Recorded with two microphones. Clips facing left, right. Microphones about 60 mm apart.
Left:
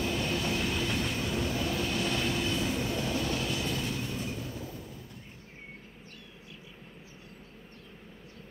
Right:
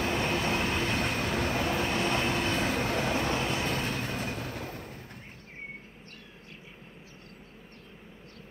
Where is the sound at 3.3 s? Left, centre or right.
Right.